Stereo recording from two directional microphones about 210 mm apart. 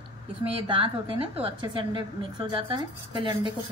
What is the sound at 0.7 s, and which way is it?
Speech, 25° right (ahead or behind).